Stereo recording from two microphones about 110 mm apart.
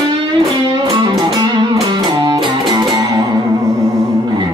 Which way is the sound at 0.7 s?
45° right (ahead or behind).